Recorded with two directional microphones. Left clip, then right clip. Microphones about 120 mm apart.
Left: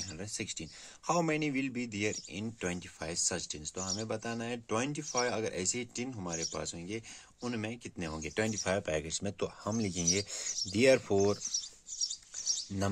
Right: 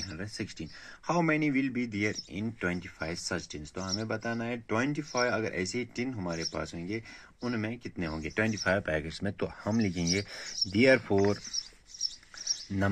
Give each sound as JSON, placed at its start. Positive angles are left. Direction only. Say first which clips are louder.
{"t": 0.0, "sound": "speech", "louder": "right 2 dB", "side_deg": 45}
{"t": 6.3, "sound": "speech", "louder": "right 3 dB", "side_deg": 45}
{"t": 10.4, "sound": "speech", "louder": "right 2 dB", "side_deg": 50}